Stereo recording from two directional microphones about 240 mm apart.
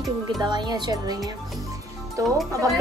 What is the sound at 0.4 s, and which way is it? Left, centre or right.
Speech, centre.